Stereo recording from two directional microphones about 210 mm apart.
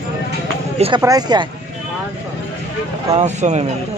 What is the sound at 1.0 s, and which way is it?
Speech, 20° right (ahead or behind).